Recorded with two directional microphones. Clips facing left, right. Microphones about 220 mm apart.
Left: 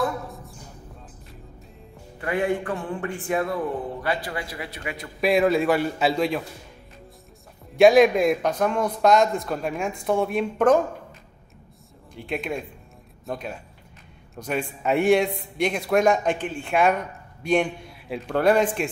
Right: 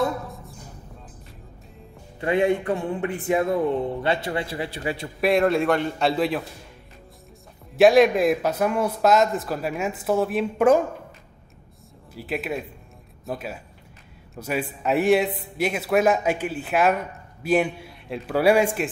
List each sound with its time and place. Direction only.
0.3 s a sound: centre (ahead or behind)
2.1 s a man's voice: 25° right (ahead or behind)
5.2 s speech: centre (ahead or behind)
7.7 s speech: centre (ahead or behind)
12.1 s speech: 5° right (ahead or behind)